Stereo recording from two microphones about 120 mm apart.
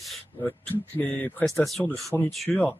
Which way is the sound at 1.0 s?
15° left (ahead or behind).